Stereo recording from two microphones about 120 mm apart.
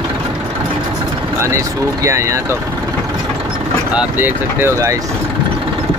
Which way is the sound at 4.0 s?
15° right (ahead or behind).